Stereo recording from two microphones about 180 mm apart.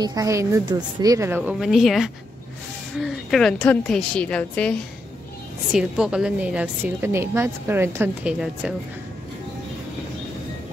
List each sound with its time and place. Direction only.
0.0 s a woman's voice: 20° right (ahead or behind); by 4.7 s 5° left (ahead or behind)
5.7 s a woman's voice: 5° right (ahead or behind)